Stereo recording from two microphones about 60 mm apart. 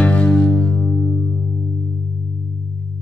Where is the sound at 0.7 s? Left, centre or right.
Centre.